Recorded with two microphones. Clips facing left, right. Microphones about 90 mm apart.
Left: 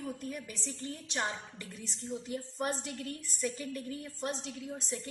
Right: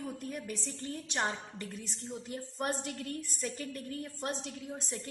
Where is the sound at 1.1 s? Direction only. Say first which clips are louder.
Right 2 dB; 35° right (ahead or behind).